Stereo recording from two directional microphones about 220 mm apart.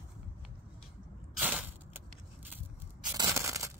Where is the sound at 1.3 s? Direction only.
5° right (ahead or behind).